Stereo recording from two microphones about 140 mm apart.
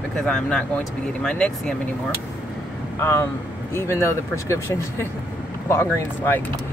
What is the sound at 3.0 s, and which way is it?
Speech, 20° left (ahead or behind).